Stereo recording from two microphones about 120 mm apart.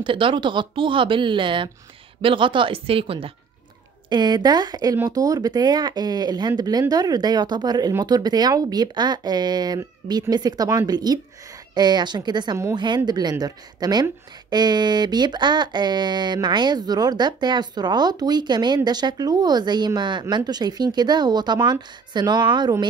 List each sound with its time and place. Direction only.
0.0 s speech: 45° right (ahead or behind)
4.1 s speech: 35° right (ahead or behind)